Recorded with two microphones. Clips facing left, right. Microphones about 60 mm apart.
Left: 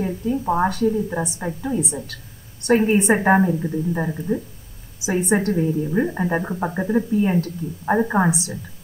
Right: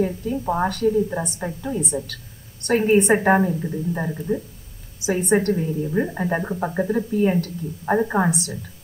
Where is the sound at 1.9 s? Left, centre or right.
Centre.